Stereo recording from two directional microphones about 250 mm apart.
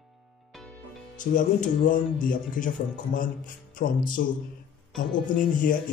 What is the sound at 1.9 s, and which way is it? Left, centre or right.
Speech, left.